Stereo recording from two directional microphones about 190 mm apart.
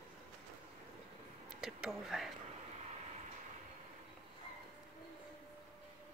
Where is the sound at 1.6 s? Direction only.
Centre (ahead or behind).